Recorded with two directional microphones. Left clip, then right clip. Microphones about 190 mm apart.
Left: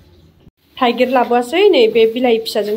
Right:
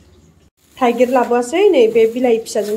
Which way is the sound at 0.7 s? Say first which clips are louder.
Even; centre (ahead or behind).